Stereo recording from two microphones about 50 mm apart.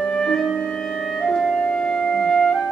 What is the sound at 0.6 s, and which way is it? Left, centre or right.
Clarinet, centre.